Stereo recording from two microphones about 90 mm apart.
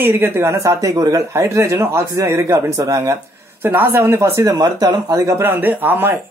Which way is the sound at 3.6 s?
25° right (ahead or behind).